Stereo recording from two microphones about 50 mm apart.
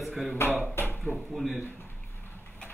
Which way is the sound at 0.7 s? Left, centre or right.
Left.